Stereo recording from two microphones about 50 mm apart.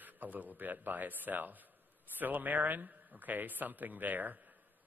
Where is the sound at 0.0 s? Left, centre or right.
Right.